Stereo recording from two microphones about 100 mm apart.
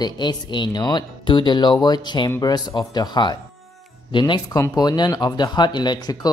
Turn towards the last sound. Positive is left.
turn(degrees=45)  # may be behind; listen again after turning